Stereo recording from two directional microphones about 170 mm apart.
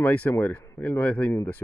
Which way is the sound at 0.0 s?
10° left (ahead or behind).